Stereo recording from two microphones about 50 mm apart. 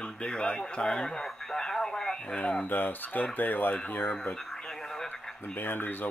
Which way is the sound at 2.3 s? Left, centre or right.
Left.